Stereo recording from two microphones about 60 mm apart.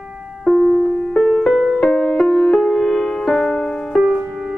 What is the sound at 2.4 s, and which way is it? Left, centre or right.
Music, centre.